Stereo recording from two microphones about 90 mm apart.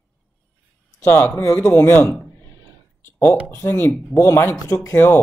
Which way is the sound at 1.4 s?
30° left (ahead or behind).